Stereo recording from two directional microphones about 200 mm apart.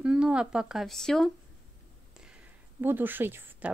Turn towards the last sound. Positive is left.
turn(degrees=-10)  # may be behind; listen again after turning